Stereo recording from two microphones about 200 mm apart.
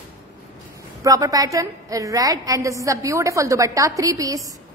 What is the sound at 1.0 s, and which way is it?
A woman's voice, 15° right (ahead or behind).